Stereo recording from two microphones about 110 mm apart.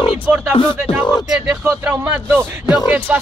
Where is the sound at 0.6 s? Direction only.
45° left (ahead or behind).